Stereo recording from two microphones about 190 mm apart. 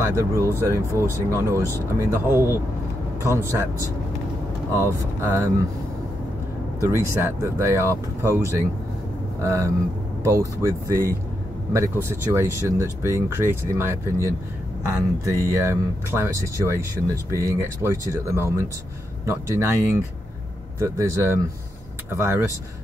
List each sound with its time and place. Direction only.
0.0 s speech: 15° right (ahead or behind)
4.7 s speech: 15° right (ahead or behind)
7.2 s speech: 15° right (ahead or behind)